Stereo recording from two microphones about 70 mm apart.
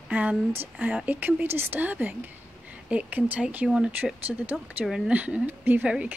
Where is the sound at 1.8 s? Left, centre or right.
Right.